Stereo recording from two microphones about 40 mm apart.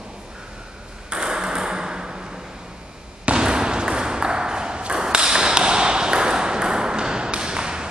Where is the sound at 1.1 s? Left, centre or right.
Centre.